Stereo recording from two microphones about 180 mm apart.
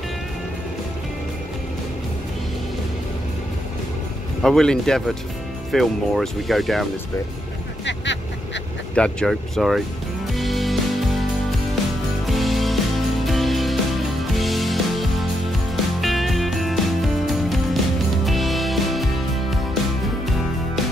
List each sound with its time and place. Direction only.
4.4 s speech: centre (ahead or behind)
7.8 s vehicle: 80° left
8.9 s speech: 5° left (ahead or behind)
10.3 s music: centre (ahead or behind)
12.3 s music: centre (ahead or behind)
20.2 s music: centre (ahead or behind)